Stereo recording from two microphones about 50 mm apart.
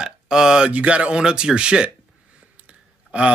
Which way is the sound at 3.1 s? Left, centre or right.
Right.